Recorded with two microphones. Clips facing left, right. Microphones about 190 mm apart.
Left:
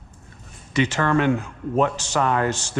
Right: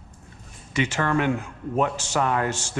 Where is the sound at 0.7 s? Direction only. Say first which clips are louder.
Left 3 dB; 10° right (ahead or behind).